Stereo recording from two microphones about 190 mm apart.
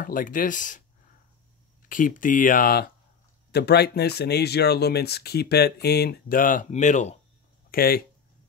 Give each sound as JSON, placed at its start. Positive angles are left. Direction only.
{"t": 0.0, "sound": "speech", "side_deg": 45}
{"t": 7.7, "sound": "speech", "side_deg": 50}